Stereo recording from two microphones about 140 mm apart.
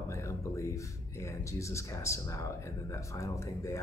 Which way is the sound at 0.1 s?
20° left (ahead or behind).